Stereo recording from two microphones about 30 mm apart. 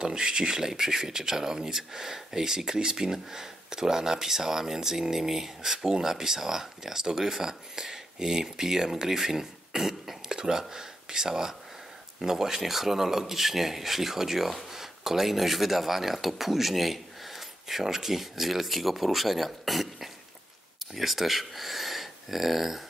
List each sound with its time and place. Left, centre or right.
0.0 s speech: right; by 10.3 s centre
10.3 s a sound: centre
10.7 s speech: right; by 22.8 s centre